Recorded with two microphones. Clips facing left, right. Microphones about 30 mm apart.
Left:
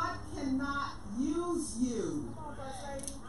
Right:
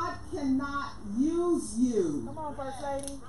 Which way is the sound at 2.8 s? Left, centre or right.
Right.